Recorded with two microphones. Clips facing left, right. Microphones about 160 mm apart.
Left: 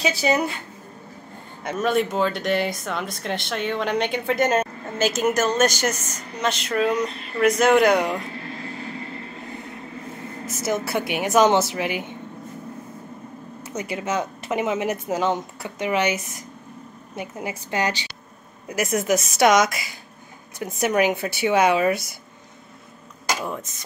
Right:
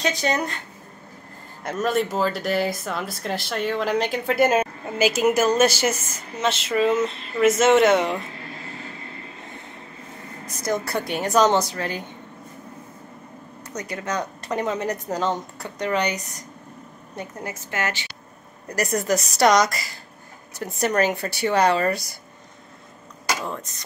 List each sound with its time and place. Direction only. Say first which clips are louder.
0.0 s a woman's voice: left 2 dB; 5° left (ahead or behind)
1.6 s speech: left 1 dB; centre (ahead or behind)
10.4 s speech: even; 5° left (ahead or behind)
11.3 s a woman's voice: left 1 dB; 20° left (ahead or behind)
13.7 s speech: left 3 dB; 10° left (ahead or behind)
14.0 s speech: left 1 dB; 20° left (ahead or behind)
17.2 s a woman's voice: left 2 dB; 15° left (ahead or behind)
18.7 s speech: left 1 dB; centre (ahead or behind)
23.4 s speech: left 1 dB; 5° left (ahead or behind)